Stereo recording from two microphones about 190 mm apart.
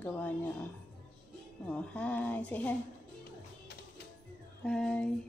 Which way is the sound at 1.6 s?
5° left (ahead or behind).